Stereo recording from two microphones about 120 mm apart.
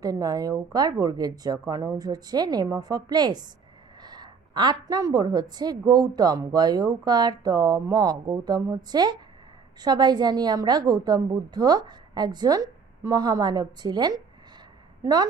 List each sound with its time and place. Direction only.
0.0 s a woman's voice: 30° right (ahead or behind)